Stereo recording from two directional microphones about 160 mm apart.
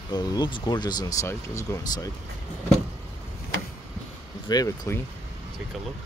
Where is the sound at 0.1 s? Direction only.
25° left (ahead or behind).